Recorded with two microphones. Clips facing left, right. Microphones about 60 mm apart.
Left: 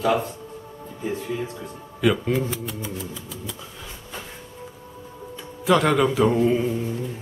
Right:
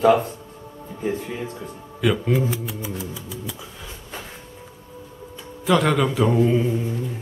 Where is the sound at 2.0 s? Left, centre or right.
Centre.